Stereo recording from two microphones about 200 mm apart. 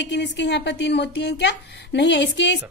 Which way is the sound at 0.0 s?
60° left (ahead or behind).